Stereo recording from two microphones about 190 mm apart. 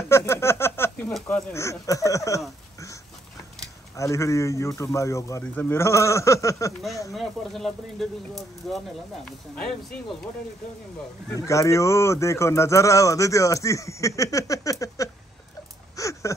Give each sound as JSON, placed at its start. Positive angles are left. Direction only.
{"t": 0.1, "sound": "speech", "side_deg": 15}
{"t": 3.9, "sound": "speech", "side_deg": 15}
{"t": 7.1, "sound": "speech", "side_deg": 0}
{"t": 11.3, "sound": "speech", "side_deg": 15}
{"t": 16.0, "sound": "a sound", "side_deg": 15}